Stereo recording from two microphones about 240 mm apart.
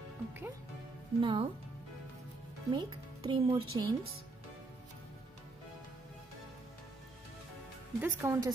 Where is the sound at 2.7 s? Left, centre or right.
Centre.